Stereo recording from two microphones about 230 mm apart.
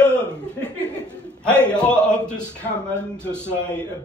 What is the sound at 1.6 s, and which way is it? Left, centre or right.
Speech, centre.